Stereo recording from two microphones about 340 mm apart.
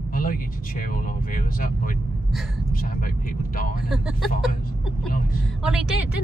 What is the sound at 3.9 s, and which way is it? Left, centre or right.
Speech, centre.